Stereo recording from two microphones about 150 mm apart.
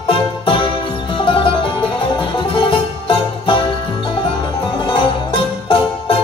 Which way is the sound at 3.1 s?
35° left (ahead or behind).